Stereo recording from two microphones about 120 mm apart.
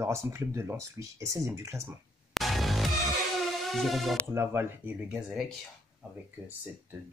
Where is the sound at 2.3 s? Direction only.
Centre (ahead or behind).